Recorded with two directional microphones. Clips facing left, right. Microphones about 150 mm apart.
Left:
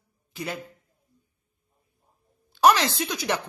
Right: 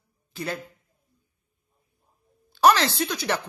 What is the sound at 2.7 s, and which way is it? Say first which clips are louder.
Speech: right 1 dB; 15° left (ahead or behind).